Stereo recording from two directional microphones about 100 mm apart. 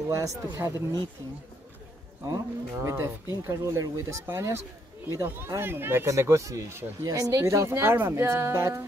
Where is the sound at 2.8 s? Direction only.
25° right (ahead or behind).